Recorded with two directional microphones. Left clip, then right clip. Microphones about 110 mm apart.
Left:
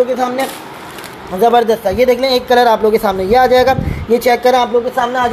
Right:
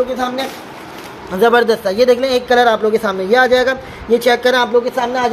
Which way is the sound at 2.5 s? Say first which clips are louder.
Left 2 dB; 20° left (ahead or behind).